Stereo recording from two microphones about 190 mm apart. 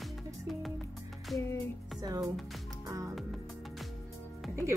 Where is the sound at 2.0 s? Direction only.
20° right (ahead or behind).